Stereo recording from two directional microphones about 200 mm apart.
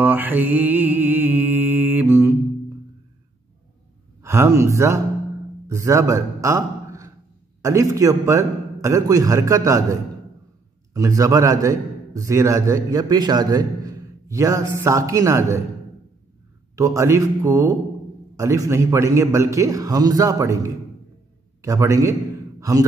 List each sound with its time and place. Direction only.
0.0 s mantra: 10° right (ahead or behind)
4.2 s a man's voice: 15° right (ahead or behind)
11.0 s a man's voice: 15° right (ahead or behind)
16.7 s a man's voice: 15° right (ahead or behind)